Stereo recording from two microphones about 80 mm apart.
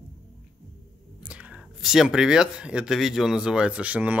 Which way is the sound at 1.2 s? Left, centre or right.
Centre.